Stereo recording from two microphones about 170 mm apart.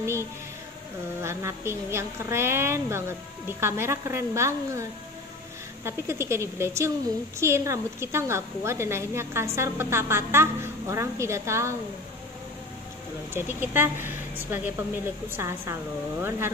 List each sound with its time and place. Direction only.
1.2 s a woman's voice: 15° right (ahead or behind)
5.9 s a woman's voice: 15° right (ahead or behind)
13.3 s a woman's voice: 15° right (ahead or behind)